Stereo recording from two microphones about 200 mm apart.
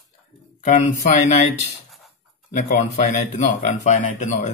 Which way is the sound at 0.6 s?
35° left (ahead or behind).